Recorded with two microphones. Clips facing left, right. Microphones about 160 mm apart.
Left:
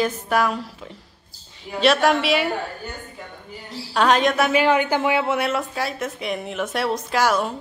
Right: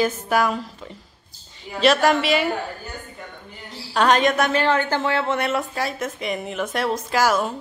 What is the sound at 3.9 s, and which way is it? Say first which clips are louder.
Speech: even; centre (ahead or behind).